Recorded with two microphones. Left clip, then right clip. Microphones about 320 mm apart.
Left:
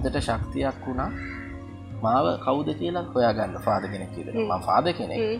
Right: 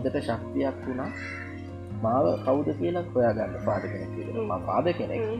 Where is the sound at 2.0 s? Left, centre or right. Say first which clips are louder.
Left 2 dB; centre.